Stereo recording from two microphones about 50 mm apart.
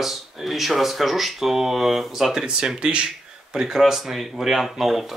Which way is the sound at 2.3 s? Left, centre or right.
Centre.